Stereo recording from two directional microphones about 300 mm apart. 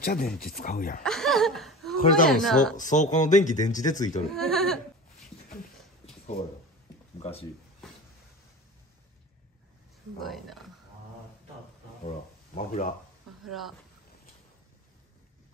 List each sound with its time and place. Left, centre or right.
0.0 s speech: left
1.0 s laughter: centre
2.2 s speech: centre
2.8 s speech: left
4.3 s speech: centre
7.2 s speech: centre
10.2 s speech: centre
12.5 s speech: left
13.4 s speech: centre